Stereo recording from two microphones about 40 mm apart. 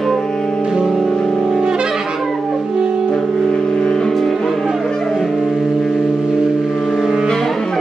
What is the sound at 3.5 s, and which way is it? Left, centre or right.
Music, centre.